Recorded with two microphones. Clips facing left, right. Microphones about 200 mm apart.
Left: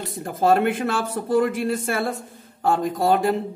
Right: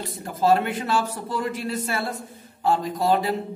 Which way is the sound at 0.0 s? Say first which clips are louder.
Left 2 dB; 50° left (ahead or behind).